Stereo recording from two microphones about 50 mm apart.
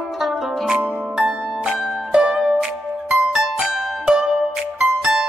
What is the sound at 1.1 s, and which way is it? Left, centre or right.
Music, centre.